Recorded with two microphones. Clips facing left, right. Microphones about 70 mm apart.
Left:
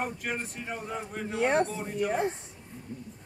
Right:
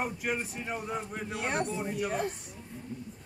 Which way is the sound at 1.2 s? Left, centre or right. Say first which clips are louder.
Left 8 dB; left.